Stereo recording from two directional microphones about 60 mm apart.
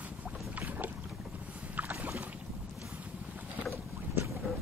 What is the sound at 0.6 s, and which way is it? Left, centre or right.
Boat, right.